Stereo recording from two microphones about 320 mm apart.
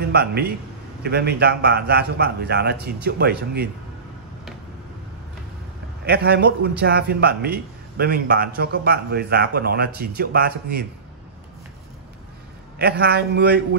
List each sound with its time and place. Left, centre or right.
0.1 s a man's voice: right
6.0 s a man's voice: right
12.7 s a man's voice: right